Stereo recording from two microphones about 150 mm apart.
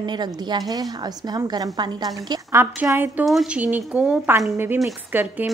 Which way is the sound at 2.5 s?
15° right (ahead or behind).